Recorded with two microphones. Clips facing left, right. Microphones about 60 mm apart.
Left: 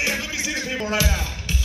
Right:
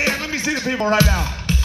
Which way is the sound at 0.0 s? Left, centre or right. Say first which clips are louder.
Right 4 dB; right.